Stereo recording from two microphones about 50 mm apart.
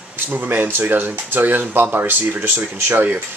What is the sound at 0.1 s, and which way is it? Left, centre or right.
Speech, right.